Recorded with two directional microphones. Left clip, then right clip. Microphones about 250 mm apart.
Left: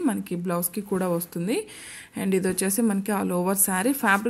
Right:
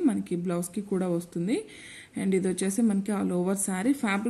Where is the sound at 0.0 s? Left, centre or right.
Centre.